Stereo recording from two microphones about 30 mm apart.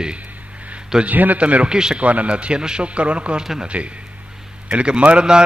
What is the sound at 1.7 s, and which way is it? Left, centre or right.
Mantra, right.